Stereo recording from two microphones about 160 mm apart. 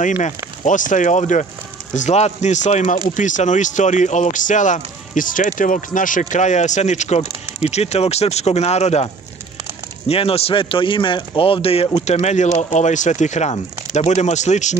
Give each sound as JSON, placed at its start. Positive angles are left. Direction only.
{"t": 0.7, "sound": "a man's voice", "side_deg": 55}